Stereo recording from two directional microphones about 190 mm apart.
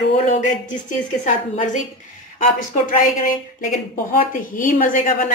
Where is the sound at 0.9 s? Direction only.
40° left (ahead or behind).